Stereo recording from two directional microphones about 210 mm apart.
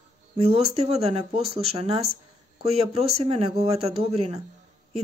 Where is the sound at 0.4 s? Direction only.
30° right (ahead or behind).